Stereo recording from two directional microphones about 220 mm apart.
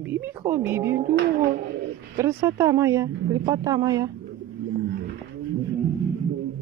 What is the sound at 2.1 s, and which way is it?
Speech, 15° right (ahead or behind).